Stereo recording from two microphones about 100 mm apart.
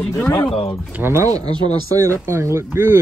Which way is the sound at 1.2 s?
40° right (ahead or behind).